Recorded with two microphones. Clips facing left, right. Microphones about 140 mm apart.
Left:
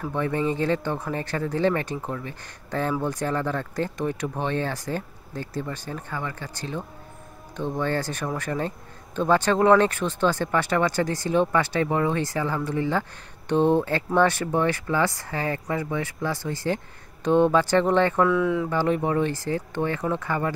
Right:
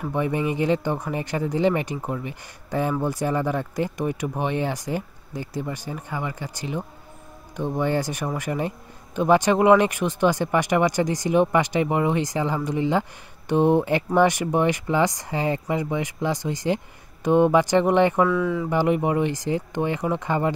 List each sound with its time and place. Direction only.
0.1 s speech: 15° right (ahead or behind)
18.2 s speech: centre (ahead or behind)
18.7 s speech: 15° right (ahead or behind)